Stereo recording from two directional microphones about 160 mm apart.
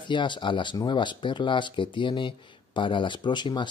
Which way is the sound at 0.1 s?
30° left (ahead or behind).